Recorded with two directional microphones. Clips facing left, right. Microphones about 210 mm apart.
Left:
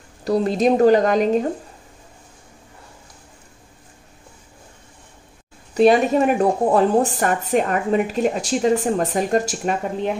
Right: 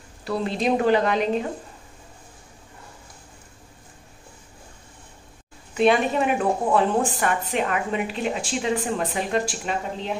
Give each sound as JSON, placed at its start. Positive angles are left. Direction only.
{"t": 0.2, "sound": "speech", "side_deg": 40}
{"t": 5.8, "sound": "a woman's voice", "side_deg": 40}